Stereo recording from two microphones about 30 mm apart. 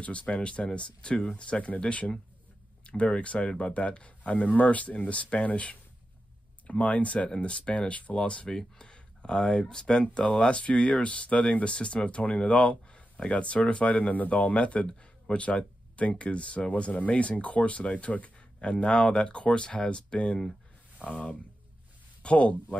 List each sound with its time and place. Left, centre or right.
0.0 s speech: left
8.7 s speech: left
10.0 s speech: left
14.1 s speech: left
14.6 s speech: left
18.6 s speech: left